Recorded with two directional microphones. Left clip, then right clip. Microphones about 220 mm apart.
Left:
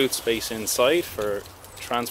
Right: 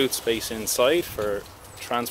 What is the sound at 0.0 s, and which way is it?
Speech, centre (ahead or behind).